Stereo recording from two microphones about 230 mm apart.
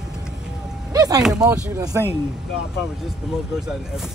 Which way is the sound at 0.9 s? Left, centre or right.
Centre.